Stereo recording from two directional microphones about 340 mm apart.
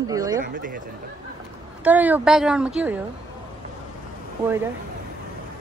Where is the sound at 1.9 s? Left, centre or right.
Centre.